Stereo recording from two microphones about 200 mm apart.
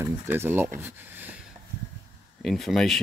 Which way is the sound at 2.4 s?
Centre (ahead or behind).